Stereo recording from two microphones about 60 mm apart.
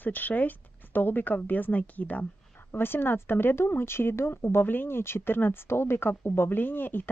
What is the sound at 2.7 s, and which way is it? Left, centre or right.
Speech, left.